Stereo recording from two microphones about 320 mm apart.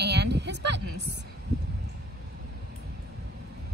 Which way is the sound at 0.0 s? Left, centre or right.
Right.